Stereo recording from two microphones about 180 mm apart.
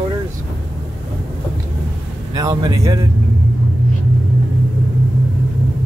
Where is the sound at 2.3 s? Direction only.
20° right (ahead or behind).